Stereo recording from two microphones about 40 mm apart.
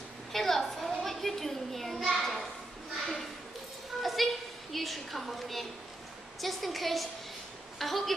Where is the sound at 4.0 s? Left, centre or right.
Centre.